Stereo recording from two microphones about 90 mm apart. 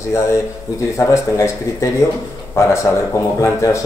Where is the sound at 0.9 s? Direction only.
35° left (ahead or behind).